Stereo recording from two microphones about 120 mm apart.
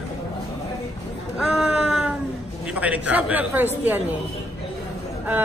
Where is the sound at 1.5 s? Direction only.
5° right (ahead or behind).